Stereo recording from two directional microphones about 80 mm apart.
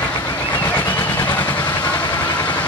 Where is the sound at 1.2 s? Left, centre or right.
Left.